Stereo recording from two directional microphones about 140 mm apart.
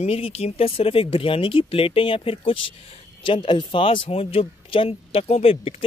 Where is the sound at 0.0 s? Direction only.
45° left (ahead or behind).